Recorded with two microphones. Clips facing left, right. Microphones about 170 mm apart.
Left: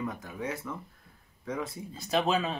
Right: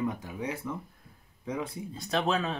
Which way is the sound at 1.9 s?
5° left (ahead or behind).